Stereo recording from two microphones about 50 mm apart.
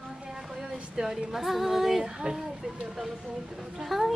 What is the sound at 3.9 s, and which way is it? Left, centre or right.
Speech, centre.